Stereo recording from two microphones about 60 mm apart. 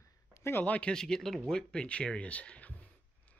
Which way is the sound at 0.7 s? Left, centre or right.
Centre.